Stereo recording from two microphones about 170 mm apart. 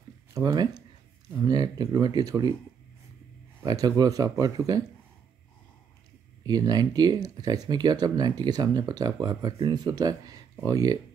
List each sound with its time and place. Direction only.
0.3 s speech: 25° right (ahead or behind)
3.6 s speech: 20° right (ahead or behind)
6.4 s speech: 20° right (ahead or behind)